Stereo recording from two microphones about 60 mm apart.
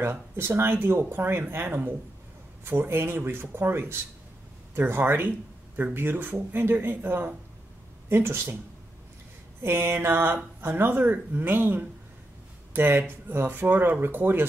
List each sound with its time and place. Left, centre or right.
0.0 s speech: right
9.6 s speech: right